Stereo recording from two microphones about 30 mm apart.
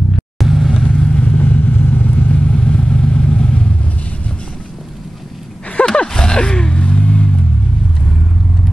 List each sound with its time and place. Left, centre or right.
0.4 s vehicle: centre
0.9 s vehicle: left
1.2 s vehicle: left
2.5 s vehicle: left
5.8 s roaring cats: left
6.1 s a sound: left